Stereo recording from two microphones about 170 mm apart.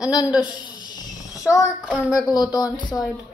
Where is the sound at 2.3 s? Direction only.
25° left (ahead or behind).